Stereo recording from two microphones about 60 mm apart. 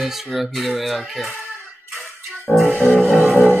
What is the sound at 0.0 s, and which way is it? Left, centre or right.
Speech, centre.